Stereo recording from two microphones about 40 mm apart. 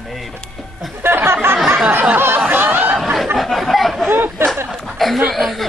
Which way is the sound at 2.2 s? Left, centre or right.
Right.